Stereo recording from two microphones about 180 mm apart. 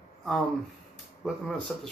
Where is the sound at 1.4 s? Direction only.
5° left (ahead or behind).